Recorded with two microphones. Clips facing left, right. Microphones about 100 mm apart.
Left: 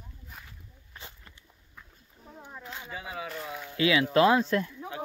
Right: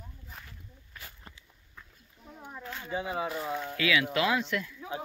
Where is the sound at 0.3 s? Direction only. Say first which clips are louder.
Even; 5° left (ahead or behind).